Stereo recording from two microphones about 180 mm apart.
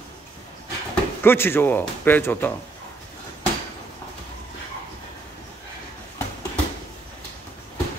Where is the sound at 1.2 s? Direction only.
10° left (ahead or behind).